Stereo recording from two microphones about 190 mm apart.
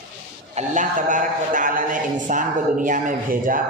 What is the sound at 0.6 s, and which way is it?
A man's voice, 40° right (ahead or behind).